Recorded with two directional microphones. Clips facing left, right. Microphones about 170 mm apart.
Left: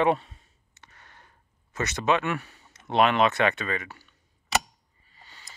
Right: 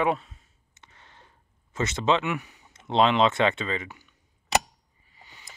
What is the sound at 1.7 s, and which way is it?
Speech, 25° right (ahead or behind).